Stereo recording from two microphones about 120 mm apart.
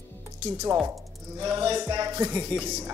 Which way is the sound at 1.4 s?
40° right (ahead or behind).